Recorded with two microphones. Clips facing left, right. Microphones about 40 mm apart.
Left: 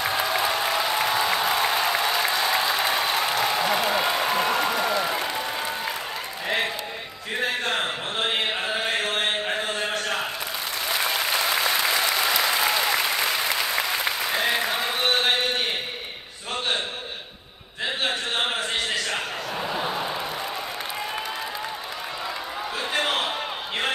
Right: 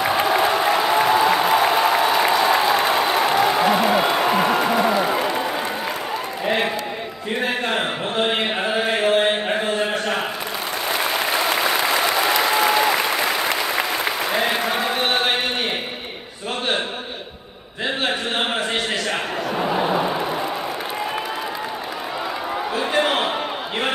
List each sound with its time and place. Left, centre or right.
0.1 s applause: right
6.4 s a sound: right
8.8 s chant: right
11.6 s applause: right
14.3 s chant: centre
19.7 s vehicle: right
23.0 s a sound: right